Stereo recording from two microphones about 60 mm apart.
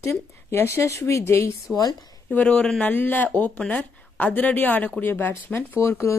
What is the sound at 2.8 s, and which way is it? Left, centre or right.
Speech, left.